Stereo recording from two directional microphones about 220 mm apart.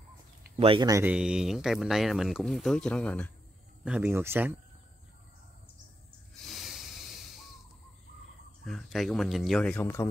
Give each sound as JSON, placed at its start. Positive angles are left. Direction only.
{"t": 0.6, "sound": "speech", "side_deg": -20}
{"t": 3.8, "sound": "speech", "side_deg": -5}
{"t": 6.4, "sound": "snort", "side_deg": 0}
{"t": 8.6, "sound": "speech", "side_deg": 0}